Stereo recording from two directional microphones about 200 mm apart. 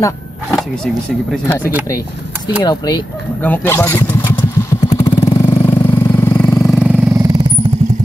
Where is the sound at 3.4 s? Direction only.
10° left (ahead or behind).